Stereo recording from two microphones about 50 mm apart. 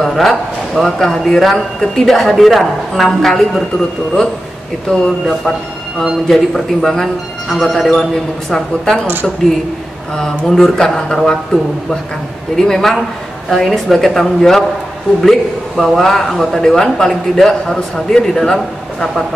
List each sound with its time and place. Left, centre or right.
0.0 s a man's voice: centre
4.9 s speech: centre
6.2 s a man's voice: centre
10.1 s a man's voice: centre
12.5 s a man's voice: centre